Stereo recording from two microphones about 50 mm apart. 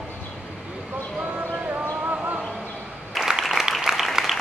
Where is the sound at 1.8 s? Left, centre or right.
Right.